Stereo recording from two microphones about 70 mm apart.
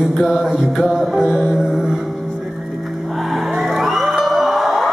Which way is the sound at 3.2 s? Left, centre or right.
Centre.